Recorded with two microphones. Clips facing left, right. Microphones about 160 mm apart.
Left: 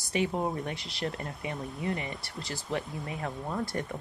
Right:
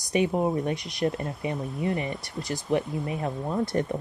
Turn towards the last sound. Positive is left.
turn(degrees=-20)  # may be behind; listen again after turning